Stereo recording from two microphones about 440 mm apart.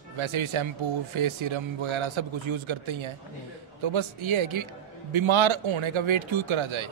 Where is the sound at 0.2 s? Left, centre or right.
Right.